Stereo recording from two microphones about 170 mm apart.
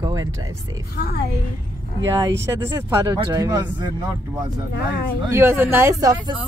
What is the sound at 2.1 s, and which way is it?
Speech, 20° right (ahead or behind).